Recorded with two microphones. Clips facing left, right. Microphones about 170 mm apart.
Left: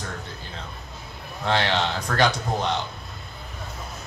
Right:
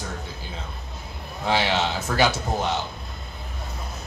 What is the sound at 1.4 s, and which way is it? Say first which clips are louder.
A man's voice: even; 5° right (ahead or behind).